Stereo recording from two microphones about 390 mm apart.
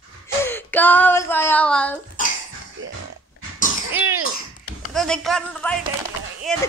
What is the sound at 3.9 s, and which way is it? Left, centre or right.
Cough, centre.